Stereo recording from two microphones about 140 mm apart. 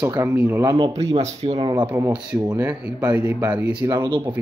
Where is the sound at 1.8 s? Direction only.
10° right (ahead or behind).